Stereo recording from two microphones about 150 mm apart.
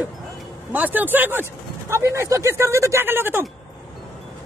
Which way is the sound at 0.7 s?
10° right (ahead or behind).